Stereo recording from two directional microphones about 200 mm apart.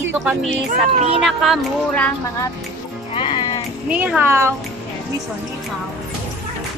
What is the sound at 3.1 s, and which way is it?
Music, 25° left (ahead or behind).